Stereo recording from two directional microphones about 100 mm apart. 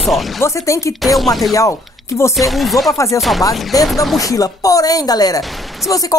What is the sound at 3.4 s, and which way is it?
Speech, 40° left (ahead or behind).